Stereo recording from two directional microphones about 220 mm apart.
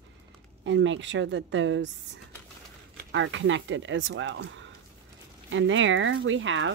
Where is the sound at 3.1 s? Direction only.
60° right (ahead or behind).